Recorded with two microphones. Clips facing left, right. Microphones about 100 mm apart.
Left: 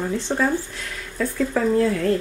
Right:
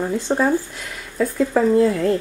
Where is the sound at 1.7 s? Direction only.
10° right (ahead or behind).